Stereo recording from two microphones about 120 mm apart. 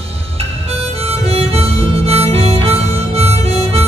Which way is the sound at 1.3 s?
55° right (ahead or behind).